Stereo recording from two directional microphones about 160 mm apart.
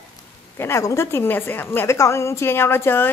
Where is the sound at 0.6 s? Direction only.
20° left (ahead or behind).